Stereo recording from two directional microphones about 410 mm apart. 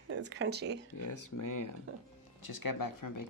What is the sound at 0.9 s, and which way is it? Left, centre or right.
Speech, left.